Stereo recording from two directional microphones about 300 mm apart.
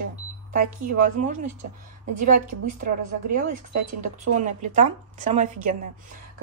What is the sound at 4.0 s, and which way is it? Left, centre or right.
Speech, right.